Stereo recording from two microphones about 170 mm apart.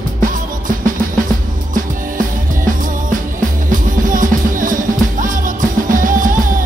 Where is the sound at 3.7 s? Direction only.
50° right (ahead or behind).